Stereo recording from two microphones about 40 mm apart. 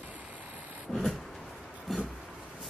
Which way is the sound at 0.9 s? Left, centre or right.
Left.